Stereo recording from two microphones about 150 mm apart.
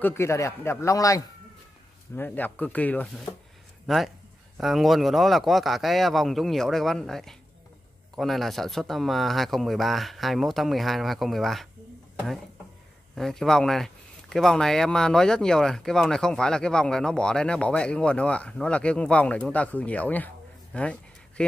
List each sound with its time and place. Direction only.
0.0 s a man's voice: 15° left (ahead or behind)
3.8 s speech: centre (ahead or behind)
13.1 s speech: centre (ahead or behind)
20.7 s a sound: 10° left (ahead or behind)